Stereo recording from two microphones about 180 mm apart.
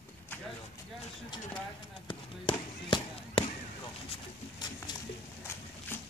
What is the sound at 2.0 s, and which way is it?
Speech, 30° left (ahead or behind).